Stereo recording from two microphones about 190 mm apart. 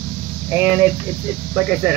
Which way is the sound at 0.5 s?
10° right (ahead or behind).